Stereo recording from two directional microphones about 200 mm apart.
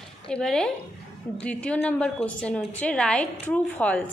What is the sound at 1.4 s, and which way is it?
A woman's voice, 5° left (ahead or behind).